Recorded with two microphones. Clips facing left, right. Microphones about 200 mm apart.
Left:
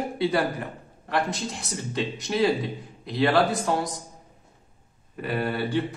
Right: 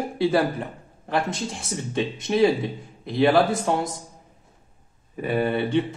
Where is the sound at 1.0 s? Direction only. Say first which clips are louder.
Right 2 dB; 25° right (ahead or behind).